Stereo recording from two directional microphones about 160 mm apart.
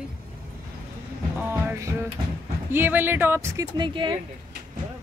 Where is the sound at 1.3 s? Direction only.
15° right (ahead or behind).